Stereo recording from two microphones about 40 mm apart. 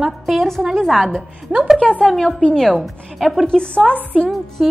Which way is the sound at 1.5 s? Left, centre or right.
Right.